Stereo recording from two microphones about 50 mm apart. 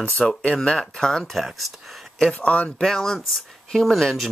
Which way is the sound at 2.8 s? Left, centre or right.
Centre.